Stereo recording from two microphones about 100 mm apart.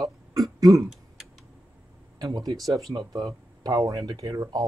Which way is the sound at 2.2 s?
40° right (ahead or behind).